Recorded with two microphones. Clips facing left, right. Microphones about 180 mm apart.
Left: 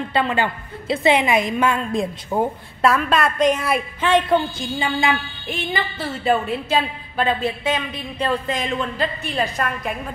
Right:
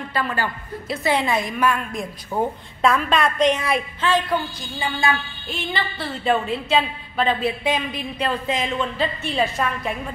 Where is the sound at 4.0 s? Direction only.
20° left (ahead or behind).